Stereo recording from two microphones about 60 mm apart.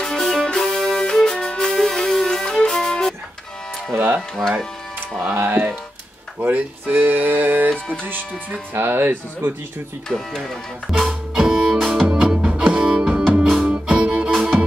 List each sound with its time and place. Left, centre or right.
0.0 s music: centre
3.9 s music: right
4.4 s speech: centre
5.2 s speech: right
8.7 s speech: right
10.0 s speech: centre
11.3 s music: centre